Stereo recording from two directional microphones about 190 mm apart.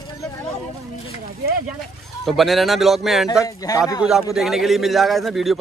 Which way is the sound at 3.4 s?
20° left (ahead or behind).